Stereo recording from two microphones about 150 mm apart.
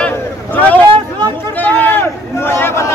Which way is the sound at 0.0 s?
10° left (ahead or behind).